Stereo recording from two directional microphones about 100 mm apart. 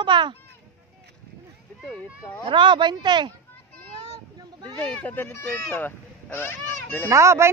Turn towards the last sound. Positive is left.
turn(degrees=-30)  # may be behind; listen again after turning